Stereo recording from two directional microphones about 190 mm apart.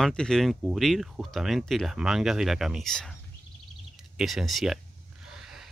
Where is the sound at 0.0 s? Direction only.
5° left (ahead or behind).